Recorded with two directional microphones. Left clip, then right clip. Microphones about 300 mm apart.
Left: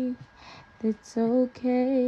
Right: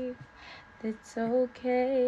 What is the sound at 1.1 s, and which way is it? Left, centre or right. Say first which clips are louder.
Female singing: left 2 dB; left.